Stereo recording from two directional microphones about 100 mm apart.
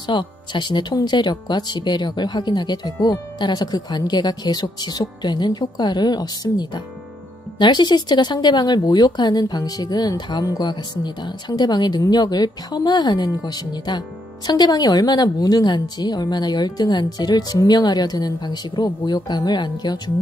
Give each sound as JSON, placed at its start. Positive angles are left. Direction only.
{"t": 0.0, "sound": "speech", "side_deg": 50}